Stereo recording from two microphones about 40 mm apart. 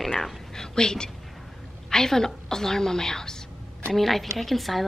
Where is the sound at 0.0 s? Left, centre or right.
Centre.